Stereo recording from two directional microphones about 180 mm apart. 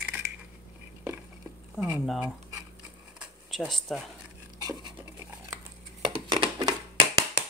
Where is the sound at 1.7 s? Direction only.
5° right (ahead or behind).